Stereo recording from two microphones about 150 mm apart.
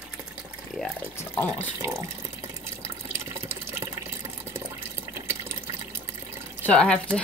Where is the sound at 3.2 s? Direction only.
15° right (ahead or behind).